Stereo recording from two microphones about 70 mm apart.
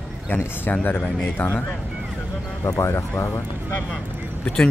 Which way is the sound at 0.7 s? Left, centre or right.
Left.